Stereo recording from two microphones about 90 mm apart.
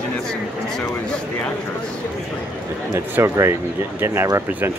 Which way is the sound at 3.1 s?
30° right (ahead or behind).